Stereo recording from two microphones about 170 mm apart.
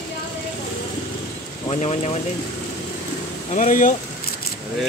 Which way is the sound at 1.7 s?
40° left (ahead or behind).